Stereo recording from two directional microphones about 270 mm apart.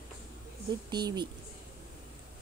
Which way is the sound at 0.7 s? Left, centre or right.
Centre.